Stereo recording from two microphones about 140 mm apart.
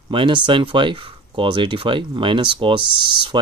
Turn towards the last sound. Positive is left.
turn(degrees=-35)  # may be behind; listen again after turning